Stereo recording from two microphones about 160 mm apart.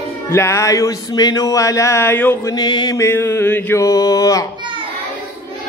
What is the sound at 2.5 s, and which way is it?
Speech, 25° left (ahead or behind).